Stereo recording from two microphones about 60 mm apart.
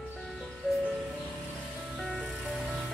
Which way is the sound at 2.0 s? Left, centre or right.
Centre.